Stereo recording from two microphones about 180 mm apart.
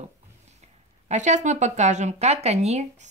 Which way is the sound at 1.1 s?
40° right (ahead or behind).